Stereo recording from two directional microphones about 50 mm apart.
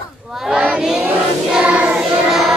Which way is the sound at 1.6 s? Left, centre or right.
Right.